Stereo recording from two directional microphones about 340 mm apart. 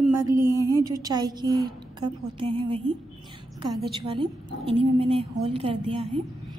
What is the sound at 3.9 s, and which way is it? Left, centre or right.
A woman's voice, centre.